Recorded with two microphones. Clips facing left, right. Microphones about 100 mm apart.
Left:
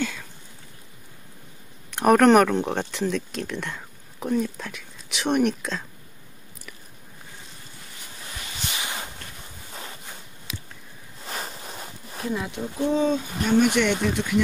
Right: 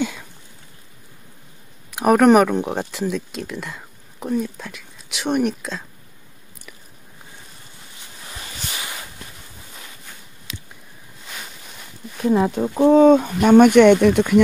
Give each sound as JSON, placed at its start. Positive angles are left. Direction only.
{"t": 1.9, "sound": "speech", "side_deg": -5}
{"t": 11.2, "sound": "a sound", "side_deg": 35}
{"t": 12.3, "sound": "speech", "side_deg": -40}